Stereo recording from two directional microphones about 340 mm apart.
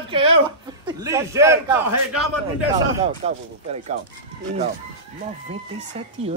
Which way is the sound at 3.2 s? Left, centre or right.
Centre.